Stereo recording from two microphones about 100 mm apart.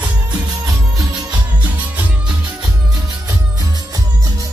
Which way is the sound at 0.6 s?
35° right (ahead or behind).